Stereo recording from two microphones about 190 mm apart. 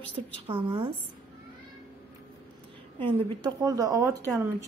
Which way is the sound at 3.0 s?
25° right (ahead or behind).